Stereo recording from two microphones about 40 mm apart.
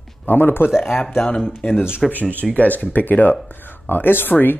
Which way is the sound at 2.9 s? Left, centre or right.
Left.